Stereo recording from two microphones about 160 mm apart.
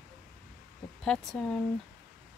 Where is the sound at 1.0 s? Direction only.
5° left (ahead or behind).